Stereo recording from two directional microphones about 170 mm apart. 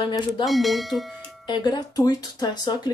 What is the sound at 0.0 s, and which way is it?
Speech, 25° left (ahead or behind).